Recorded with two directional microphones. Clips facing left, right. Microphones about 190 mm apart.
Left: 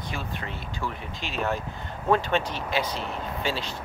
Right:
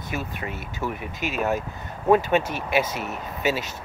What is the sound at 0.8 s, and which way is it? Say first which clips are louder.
Speech: right 4 dB; 20° right (ahead or behind).